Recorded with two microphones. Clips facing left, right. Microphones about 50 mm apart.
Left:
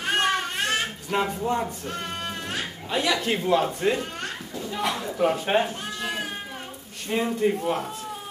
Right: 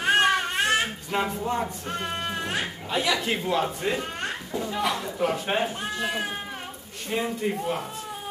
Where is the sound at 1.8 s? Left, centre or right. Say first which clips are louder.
Right 2 dB; centre.